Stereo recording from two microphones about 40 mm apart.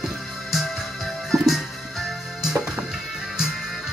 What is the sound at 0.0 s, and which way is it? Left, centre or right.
Music, centre.